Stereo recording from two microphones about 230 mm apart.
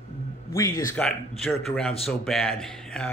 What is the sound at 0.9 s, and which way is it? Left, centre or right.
A man's voice, centre.